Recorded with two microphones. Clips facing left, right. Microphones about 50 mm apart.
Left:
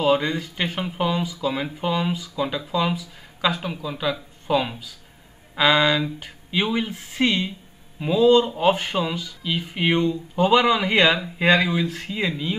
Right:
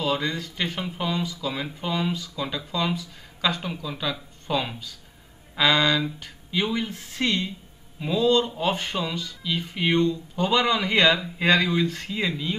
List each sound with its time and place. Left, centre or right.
0.0 s speech: centre